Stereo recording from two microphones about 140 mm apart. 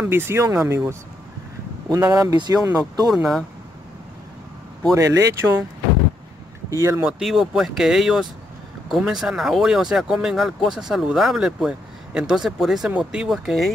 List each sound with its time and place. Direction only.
0.0 s speech: 15° right (ahead or behind)
3.1 s speech: centre (ahead or behind)
4.9 s speech: 20° right (ahead or behind)
6.7 s speech: 20° right (ahead or behind)
7.1 s speech: centre (ahead or behind)